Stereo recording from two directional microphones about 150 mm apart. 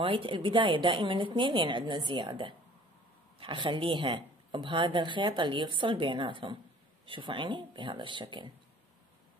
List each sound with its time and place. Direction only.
0.0 s a woman's voice: 35° right (ahead or behind)